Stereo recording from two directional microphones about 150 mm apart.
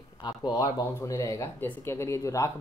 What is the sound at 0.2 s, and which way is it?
Speech, 25° left (ahead or behind).